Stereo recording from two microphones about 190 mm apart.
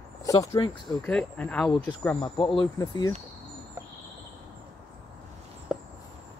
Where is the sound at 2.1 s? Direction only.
25° left (ahead or behind).